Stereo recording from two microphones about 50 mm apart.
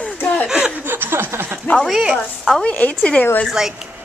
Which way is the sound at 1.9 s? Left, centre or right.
Centre.